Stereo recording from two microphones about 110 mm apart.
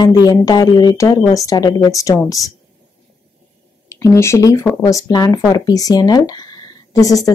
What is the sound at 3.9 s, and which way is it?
Speech, 25° left (ahead or behind).